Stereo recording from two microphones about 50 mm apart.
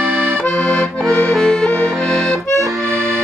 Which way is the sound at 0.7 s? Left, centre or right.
Centre.